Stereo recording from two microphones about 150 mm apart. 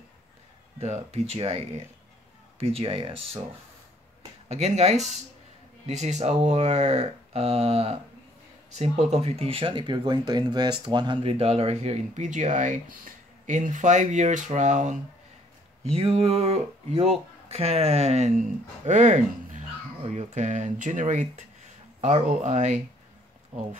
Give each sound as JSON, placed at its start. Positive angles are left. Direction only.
{"t": 0.7, "sound": "speech", "side_deg": -45}
{"t": 4.5, "sound": "speech", "side_deg": -45}
{"t": 15.8, "sound": "speech", "side_deg": -40}